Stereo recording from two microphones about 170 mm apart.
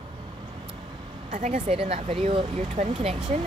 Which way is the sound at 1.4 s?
40° right (ahead or behind).